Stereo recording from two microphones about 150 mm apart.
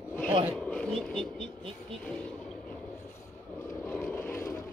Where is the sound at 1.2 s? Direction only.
35° right (ahead or behind).